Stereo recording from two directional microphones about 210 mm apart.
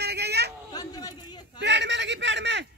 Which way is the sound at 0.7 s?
20° left (ahead or behind).